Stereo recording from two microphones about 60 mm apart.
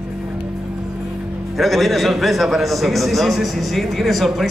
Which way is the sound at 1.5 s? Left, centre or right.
Centre.